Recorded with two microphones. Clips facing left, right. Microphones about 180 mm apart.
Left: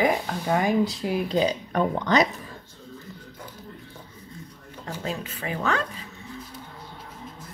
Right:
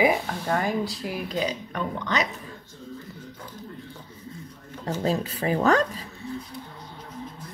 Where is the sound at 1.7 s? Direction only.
40° left (ahead or behind).